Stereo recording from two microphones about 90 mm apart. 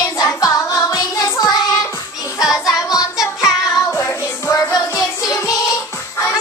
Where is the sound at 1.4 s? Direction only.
45° left (ahead or behind).